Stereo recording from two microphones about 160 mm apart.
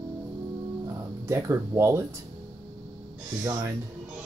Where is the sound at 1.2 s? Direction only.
15° right (ahead or behind).